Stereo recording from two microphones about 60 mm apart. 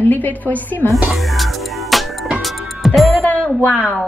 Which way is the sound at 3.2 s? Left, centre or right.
Left.